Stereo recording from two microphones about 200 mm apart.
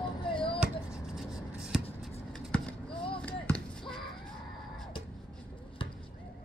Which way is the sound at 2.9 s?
25° left (ahead or behind).